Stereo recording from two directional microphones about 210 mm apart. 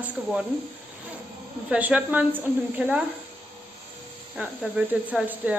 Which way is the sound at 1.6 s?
5° right (ahead or behind).